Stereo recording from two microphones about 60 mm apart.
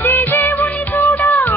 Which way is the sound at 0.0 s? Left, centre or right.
Left.